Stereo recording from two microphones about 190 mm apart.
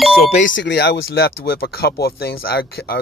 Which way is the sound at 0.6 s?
65° left (ahead or behind).